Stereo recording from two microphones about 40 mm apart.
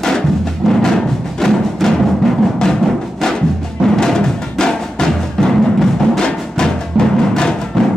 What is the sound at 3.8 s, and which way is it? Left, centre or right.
Drum, centre.